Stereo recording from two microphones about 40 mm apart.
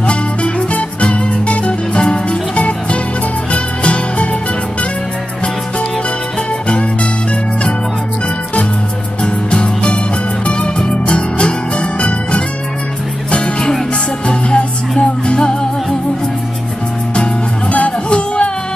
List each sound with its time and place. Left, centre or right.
0.0 s music: left
9.2 s music: left
17.1 s music: left